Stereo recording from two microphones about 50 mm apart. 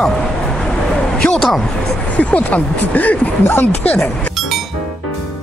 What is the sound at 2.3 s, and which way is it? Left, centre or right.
Speech, left.